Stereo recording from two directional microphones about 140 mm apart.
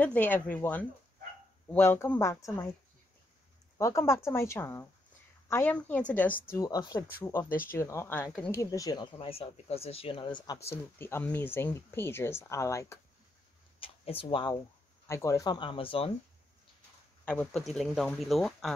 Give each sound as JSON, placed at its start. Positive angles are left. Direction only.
{"t": 0.0, "sound": "speech", "side_deg": 10}
{"t": 3.7, "sound": "speech", "side_deg": 20}
{"t": 6.5, "sound": "speech", "side_deg": 25}
{"t": 13.7, "sound": "speech", "side_deg": 40}
{"t": 15.0, "sound": "speech", "side_deg": 20}
{"t": 17.2, "sound": "speech", "side_deg": 10}